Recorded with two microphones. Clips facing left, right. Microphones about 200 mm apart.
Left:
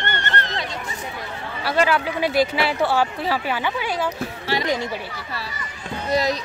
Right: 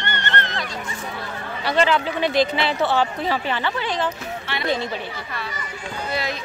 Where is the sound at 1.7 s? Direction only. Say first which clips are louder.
Right 1 dB; 5° left (ahead or behind).